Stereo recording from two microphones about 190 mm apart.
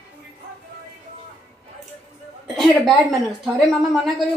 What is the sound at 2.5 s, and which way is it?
Speech, centre (ahead or behind).